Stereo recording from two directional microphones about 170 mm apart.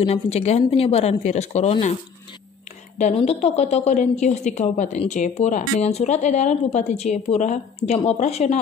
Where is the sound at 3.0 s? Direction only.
40° left (ahead or behind).